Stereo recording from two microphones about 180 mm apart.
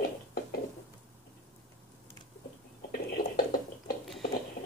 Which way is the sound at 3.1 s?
50° left (ahead or behind).